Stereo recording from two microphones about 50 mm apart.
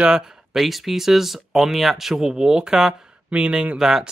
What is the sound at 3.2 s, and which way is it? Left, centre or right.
Speech, right.